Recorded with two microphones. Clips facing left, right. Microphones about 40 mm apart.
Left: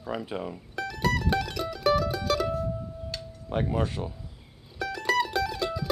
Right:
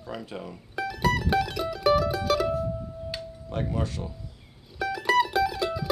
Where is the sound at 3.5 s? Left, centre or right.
Centre.